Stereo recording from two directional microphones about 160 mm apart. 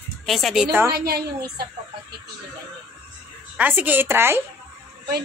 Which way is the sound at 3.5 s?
10° right (ahead or behind).